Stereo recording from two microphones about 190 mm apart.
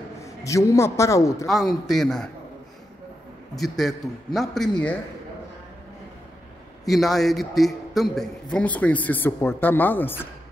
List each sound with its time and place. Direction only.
0.2 s a man's voice: 15° left (ahead or behind)
1.5 s a man's voice: centre (ahead or behind)
3.5 s a man's voice: centre (ahead or behind)
6.8 s a man's voice: centre (ahead or behind)